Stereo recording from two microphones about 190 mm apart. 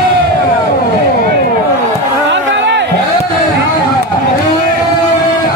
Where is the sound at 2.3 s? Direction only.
70° right (ahead or behind).